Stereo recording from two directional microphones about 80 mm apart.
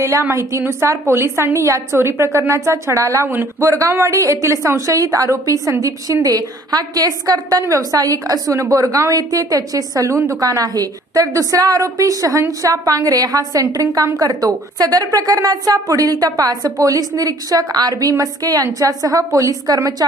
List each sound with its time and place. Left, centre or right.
0.0 s a woman's voice: right
3.3 s speech: right
4.1 s a woman's voice: right